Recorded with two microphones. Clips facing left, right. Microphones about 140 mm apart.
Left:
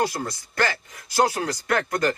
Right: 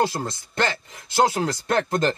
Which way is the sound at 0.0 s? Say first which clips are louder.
Right 2 dB; 30° right (ahead or behind).